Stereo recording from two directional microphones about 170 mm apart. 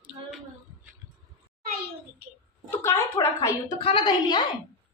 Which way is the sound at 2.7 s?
15° left (ahead or behind).